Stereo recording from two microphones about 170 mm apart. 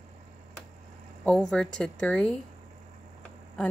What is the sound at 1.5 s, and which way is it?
Speech, 5° left (ahead or behind).